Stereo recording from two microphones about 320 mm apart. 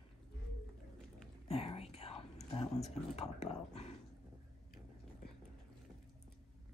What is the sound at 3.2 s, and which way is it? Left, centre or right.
Speech, centre.